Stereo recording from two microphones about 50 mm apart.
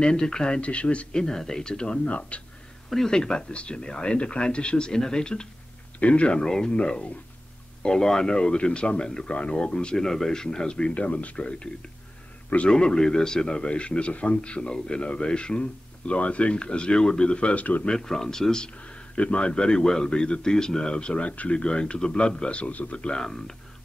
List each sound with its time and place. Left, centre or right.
0.0 s a man's voice: centre
1.2 s a man's voice: centre
2.9 s a man's voice: centre; by 12.7 s left
12.7 s a man's voice: centre; by 17.8 s left
17.8 s speech: centre
18.8 s a man's voice: left